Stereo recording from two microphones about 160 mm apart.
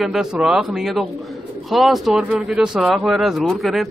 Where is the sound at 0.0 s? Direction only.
Centre (ahead or behind).